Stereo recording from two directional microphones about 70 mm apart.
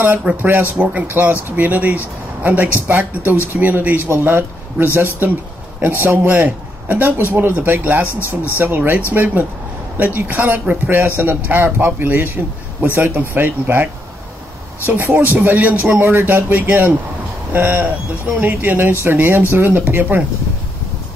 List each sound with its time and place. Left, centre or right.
0.2 s speech: centre
14.9 s speech: right